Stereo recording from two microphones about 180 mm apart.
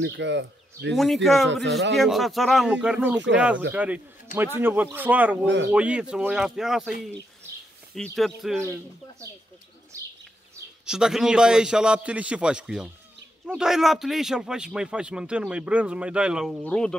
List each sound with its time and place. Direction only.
0.0 s speech: 80° right
0.9 s speech: centre (ahead or behind)
7.9 s speech: centre (ahead or behind)
10.9 s speech: 5° right (ahead or behind)